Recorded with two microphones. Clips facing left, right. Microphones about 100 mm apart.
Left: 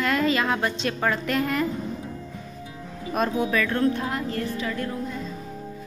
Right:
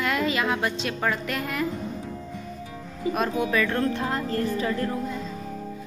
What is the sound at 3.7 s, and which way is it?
Speech, 25° right (ahead or behind).